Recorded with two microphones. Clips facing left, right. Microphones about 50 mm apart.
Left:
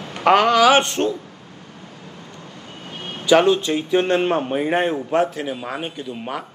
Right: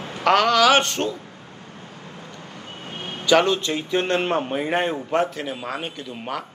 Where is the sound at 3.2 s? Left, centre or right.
Centre.